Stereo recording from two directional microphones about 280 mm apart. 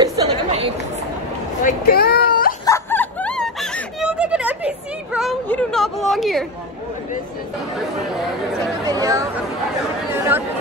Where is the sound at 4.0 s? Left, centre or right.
Centre.